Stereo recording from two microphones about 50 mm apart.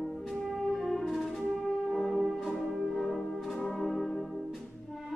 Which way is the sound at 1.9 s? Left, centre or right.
Centre.